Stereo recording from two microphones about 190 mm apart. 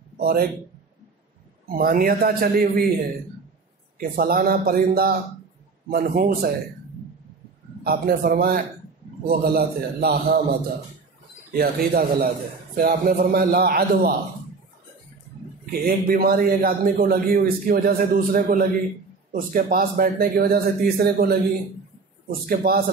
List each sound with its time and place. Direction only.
0.2 s a man's voice: 50° right (ahead or behind)
1.7 s a man's voice: 50° right (ahead or behind)
4.0 s a man's voice: 50° right (ahead or behind)
7.8 s a man's voice: 55° right (ahead or behind)
11.5 s a man's voice: 55° right (ahead or behind)
15.8 s a man's voice: 50° right (ahead or behind)